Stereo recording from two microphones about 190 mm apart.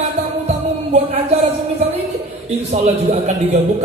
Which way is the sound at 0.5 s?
35° right (ahead or behind).